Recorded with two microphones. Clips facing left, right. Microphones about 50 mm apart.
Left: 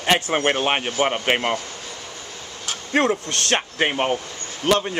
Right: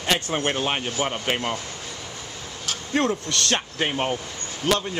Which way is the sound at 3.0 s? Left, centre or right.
Left.